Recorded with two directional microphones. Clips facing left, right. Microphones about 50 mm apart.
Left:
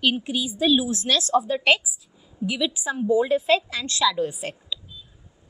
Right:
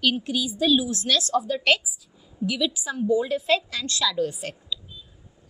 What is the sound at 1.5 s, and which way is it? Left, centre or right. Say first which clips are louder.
A woman's voice: left 2 dB; left.